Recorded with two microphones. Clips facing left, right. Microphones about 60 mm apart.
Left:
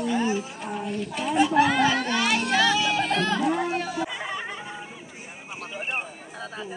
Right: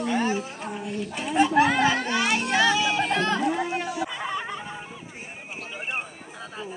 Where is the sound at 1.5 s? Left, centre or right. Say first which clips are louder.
Even; centre.